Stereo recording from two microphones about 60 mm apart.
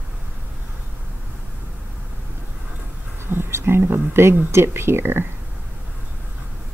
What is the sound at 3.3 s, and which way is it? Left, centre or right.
Speech, right.